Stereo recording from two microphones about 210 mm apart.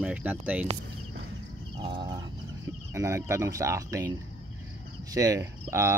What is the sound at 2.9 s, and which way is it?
Speech, 15° right (ahead or behind).